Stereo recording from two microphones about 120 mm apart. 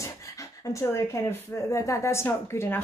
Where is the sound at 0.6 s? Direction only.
25° left (ahead or behind).